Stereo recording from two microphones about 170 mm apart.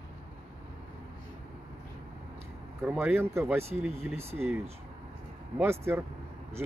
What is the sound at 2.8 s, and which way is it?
Speech, 10° right (ahead or behind).